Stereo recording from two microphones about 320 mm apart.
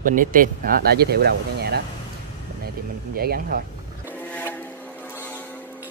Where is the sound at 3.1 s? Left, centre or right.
Right.